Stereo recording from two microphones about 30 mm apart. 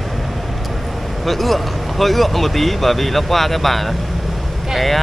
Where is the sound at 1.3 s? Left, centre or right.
Centre.